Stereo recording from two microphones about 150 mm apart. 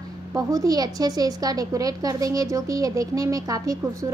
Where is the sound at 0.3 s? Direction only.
20° right (ahead or behind).